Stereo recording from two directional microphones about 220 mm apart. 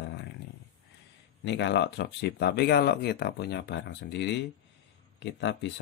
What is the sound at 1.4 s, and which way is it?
Speech, 50° left (ahead or behind).